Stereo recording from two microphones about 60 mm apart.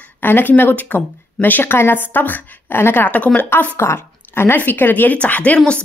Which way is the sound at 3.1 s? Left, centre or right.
Left.